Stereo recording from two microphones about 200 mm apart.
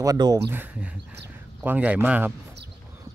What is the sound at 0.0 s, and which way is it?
Speech, 20° right (ahead or behind).